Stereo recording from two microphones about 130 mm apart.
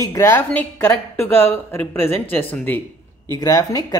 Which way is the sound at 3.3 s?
25° left (ahead or behind).